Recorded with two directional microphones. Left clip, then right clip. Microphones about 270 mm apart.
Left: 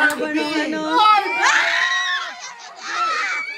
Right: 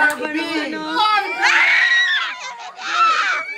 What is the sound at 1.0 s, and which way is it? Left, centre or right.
Speech, left.